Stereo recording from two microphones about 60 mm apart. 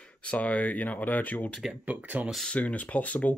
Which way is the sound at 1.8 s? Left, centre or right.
Right.